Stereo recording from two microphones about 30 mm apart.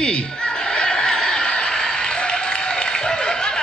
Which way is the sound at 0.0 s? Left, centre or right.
Left.